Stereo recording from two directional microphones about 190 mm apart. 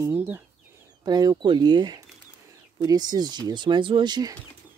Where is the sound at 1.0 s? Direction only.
20° right (ahead or behind).